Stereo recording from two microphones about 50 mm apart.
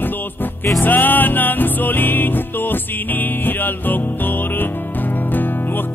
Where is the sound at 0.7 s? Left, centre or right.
Left.